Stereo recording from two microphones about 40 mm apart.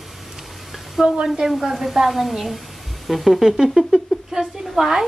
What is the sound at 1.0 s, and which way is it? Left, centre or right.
A woman's voice, centre.